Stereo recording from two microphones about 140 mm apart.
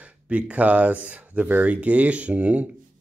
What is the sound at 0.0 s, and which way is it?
Speech, 10° right (ahead or behind).